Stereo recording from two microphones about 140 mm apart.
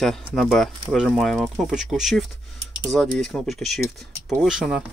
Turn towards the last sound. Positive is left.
turn(degrees=-5)  # may be behind; listen again after turning